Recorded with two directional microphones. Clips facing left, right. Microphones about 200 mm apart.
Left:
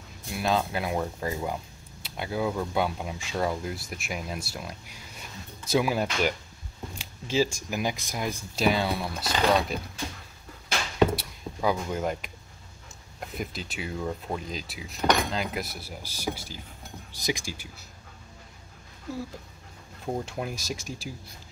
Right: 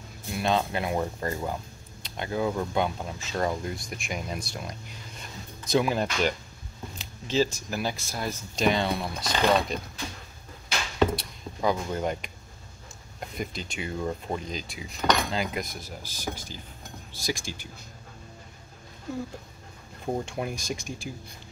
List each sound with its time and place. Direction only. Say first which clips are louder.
0.3 s speech: right 1 dB; centre (ahead or behind)
11.0 s chop: left 1 dB; 5° left (ahead or behind)
13.3 s speech: right 1 dB; 5° left (ahead or behind)
20.1 s speech: right 1 dB; 5° right (ahead or behind)